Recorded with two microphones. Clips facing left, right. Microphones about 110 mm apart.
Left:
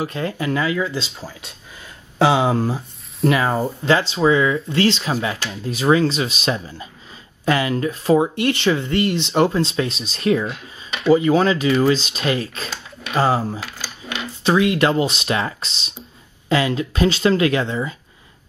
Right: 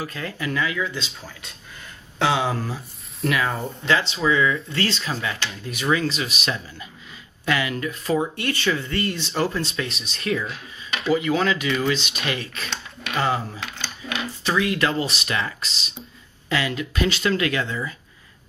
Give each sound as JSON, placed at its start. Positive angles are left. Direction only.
{"t": 0.0, "sound": "speech", "side_deg": 25}
{"t": 10.5, "sound": "speech", "side_deg": 0}
{"t": 11.1, "sound": "speech", "side_deg": 30}
{"t": 12.6, "sound": "a sound", "side_deg": 5}
{"t": 13.1, "sound": "speech", "side_deg": 30}
{"t": 13.6, "sound": "speech", "side_deg": 5}
{"t": 14.4, "sound": "speech", "side_deg": 25}